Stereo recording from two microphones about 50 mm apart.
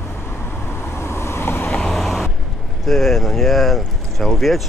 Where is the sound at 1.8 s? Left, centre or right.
Centre.